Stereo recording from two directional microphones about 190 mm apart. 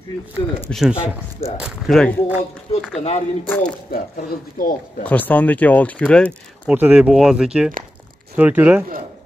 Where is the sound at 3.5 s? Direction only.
10° left (ahead or behind).